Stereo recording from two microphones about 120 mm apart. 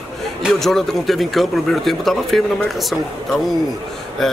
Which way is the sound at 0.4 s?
Centre (ahead or behind).